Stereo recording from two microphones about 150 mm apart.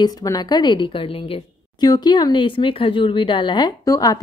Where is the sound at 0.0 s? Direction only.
25° left (ahead or behind).